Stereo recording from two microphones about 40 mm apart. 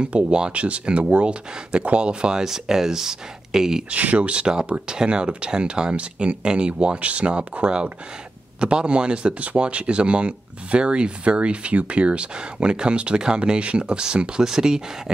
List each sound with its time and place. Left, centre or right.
0.0 s speech: right
2.4 s speech: centre
3.9 s speech: right
8.5 s speech: right